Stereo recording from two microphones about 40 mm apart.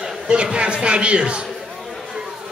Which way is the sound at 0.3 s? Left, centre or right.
Right.